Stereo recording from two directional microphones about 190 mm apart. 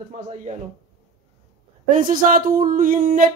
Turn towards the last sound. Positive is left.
turn(degrees=-45)  # may be behind; listen again after turning